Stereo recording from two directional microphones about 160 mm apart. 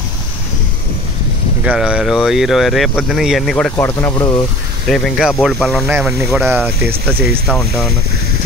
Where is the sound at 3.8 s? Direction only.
20° left (ahead or behind).